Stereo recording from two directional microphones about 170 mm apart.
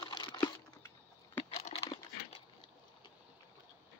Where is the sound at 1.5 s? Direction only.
35° left (ahead or behind).